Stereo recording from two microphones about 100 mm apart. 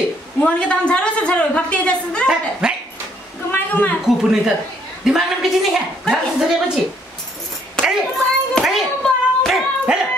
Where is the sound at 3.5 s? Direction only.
20° left (ahead or behind).